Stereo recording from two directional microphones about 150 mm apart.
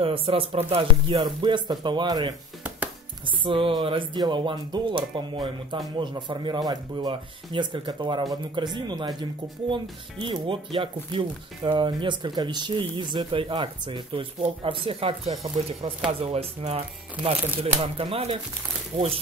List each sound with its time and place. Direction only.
0.0 s speech: 35° right (ahead or behind)